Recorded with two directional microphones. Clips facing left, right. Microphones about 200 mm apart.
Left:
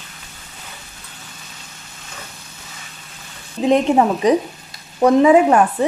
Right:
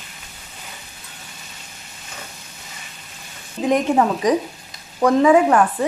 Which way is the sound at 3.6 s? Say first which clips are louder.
Left 3 dB; 25° left (ahead or behind).